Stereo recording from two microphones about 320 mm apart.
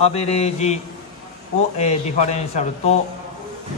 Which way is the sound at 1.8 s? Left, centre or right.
Left.